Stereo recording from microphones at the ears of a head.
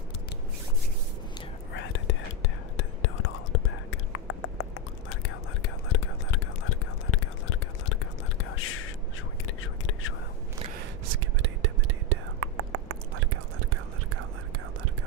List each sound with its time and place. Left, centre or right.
1.7 s whispering: left
10.6 s whispering: right